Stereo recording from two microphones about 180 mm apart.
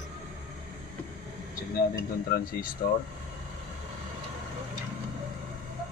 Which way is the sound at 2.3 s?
50° left (ahead or behind).